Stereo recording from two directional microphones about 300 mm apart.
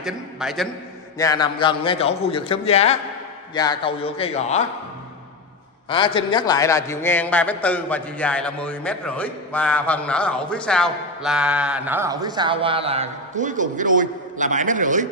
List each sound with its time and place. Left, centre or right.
0.0 s a man's voice: centre
1.1 s a man's voice: centre
5.9 s a man's voice: centre; by 15.0 s right